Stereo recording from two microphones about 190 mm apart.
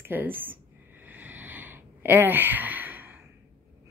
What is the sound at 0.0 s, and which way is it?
Speech, 10° right (ahead or behind).